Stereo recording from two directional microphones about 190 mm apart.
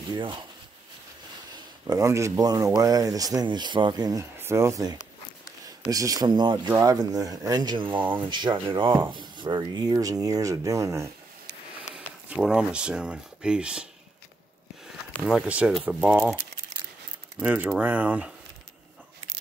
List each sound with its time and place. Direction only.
0.1 s speech: 25° right (ahead or behind)
1.9 s speech: 15° right (ahead or behind)
11.9 s speech: 5° right (ahead or behind)
15.1 s speech: centre (ahead or behind)